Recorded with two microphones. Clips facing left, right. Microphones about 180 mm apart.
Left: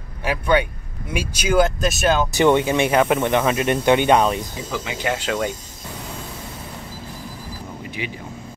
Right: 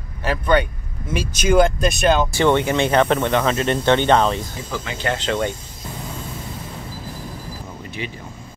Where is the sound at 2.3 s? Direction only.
15° left (ahead or behind).